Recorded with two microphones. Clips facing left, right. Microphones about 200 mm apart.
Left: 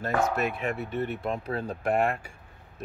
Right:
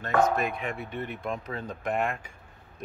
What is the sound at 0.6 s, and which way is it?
Speech, 45° left (ahead or behind).